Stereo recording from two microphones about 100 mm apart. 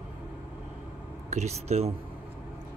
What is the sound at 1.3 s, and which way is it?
Speech, 90° right.